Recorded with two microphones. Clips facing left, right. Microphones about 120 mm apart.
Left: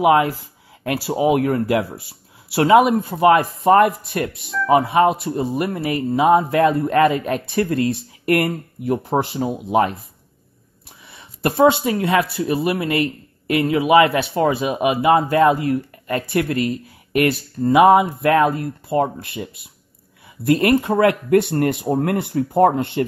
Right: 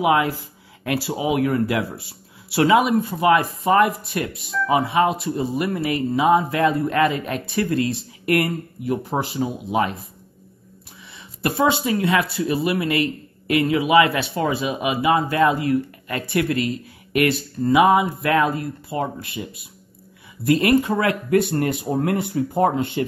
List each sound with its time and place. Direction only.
0.0 s speech: 40° left (ahead or behind)
11.1 s a sound: 45° left (ahead or behind)
11.6 s speech: 45° left (ahead or behind)
20.4 s speech: 45° left (ahead or behind); by 21.7 s 65° left (ahead or behind)
21.8 s speech: 50° left (ahead or behind)